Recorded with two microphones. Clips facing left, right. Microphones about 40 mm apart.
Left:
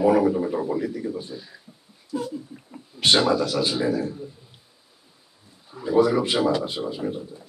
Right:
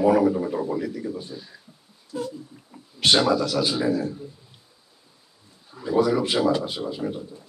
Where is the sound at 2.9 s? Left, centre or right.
Centre.